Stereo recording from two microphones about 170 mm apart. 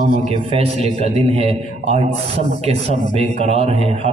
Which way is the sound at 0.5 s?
35° right (ahead or behind).